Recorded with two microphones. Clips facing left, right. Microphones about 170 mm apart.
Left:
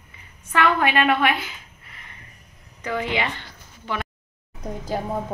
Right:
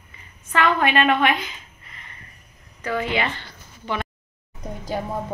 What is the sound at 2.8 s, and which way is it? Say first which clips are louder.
Speech: right 1 dB; 15° left (ahead or behind).